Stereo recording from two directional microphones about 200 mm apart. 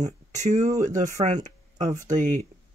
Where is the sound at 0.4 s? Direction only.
35° right (ahead or behind).